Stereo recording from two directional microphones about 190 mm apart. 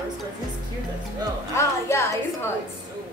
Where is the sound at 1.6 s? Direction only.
15° left (ahead or behind).